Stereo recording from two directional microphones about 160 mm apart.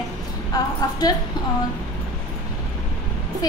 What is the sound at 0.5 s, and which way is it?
Music, 25° left (ahead or behind).